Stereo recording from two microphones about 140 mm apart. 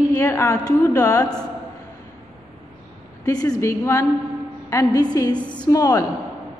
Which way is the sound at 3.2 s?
25° left (ahead or behind).